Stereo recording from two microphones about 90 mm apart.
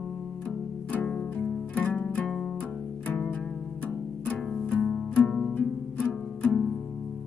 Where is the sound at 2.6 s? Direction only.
15° left (ahead or behind).